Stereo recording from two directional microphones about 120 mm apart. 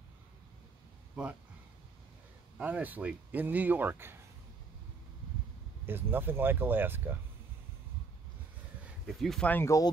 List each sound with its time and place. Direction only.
2.5 s speech: 15° right (ahead or behind)
5.9 s speech: 20° right (ahead or behind)
9.0 s speech: centre (ahead or behind)
9.5 s speech: 20° left (ahead or behind)